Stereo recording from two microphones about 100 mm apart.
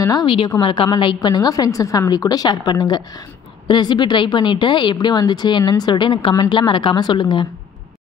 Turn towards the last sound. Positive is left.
turn(degrees=50)  # may be behind; listen again after turning